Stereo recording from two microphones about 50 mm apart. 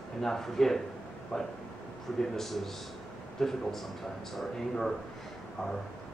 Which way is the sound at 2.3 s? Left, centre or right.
Centre.